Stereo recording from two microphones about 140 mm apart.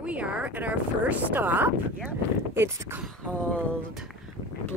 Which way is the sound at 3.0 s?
10° left (ahead or behind).